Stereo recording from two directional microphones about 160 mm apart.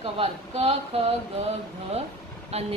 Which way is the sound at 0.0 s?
40° right (ahead or behind).